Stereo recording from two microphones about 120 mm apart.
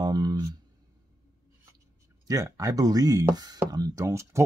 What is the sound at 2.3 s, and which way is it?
Speech, 30° right (ahead or behind).